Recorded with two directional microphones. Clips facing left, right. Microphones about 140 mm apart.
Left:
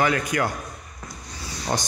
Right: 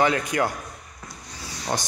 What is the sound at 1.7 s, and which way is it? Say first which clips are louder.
Speech: left 1 dB; centre (ahead or behind).